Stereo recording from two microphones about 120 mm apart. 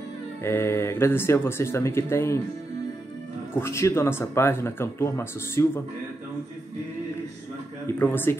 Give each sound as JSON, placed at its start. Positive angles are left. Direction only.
{"t": 0.4, "sound": "speech", "side_deg": 20}
{"t": 3.5, "sound": "speech", "side_deg": 20}
{"t": 8.0, "sound": "speech", "side_deg": 15}